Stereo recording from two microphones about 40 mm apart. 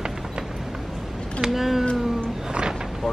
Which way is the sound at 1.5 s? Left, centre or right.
Centre.